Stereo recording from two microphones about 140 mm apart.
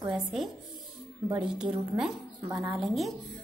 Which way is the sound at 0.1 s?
Centre (ahead or behind).